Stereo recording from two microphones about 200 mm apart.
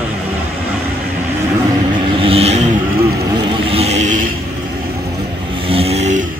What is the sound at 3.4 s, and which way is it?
Vehicle, 25° right (ahead or behind).